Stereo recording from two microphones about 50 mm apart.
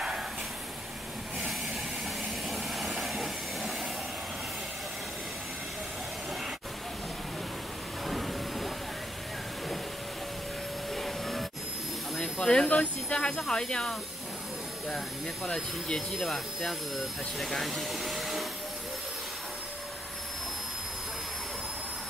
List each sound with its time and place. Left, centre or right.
2.5 s vehicle: centre
8.1 s train: centre
11.0 s a sound: centre
12.2 s speech: centre
15.4 s speech: centre
16.2 s speech: centre